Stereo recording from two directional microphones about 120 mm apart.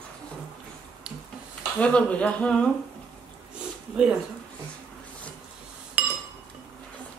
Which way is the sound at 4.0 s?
10° right (ahead or behind).